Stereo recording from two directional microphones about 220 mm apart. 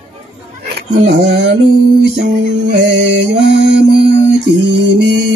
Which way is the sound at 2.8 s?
55° right (ahead or behind).